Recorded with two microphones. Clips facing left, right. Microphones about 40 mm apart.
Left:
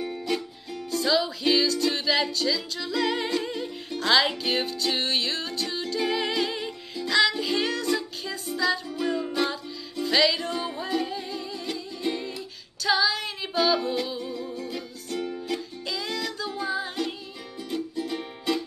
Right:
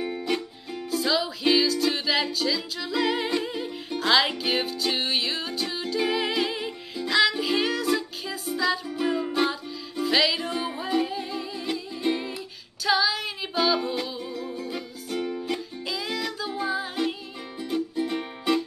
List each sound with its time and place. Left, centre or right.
0.0 s music: centre
0.8 s music: centre